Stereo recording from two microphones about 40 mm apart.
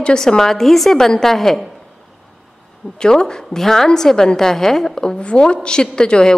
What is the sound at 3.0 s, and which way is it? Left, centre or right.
A woman's voice, centre.